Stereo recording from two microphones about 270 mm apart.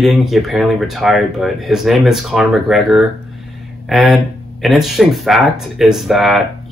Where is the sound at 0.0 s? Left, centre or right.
Centre.